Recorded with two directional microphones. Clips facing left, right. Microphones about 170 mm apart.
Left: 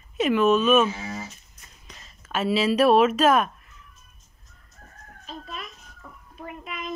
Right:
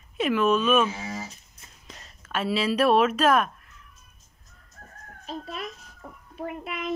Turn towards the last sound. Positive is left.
turn(degrees=-65)  # may be behind; listen again after turning